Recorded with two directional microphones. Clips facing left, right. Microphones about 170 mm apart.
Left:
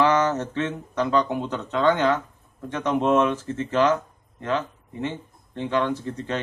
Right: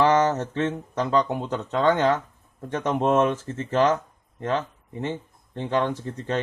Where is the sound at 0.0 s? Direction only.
35° right (ahead or behind).